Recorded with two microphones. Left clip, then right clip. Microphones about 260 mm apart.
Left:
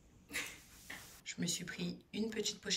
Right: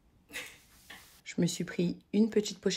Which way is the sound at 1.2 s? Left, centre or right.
Centre.